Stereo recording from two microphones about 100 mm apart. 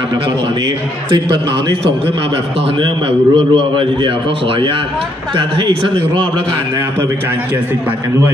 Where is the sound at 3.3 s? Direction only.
55° right (ahead or behind).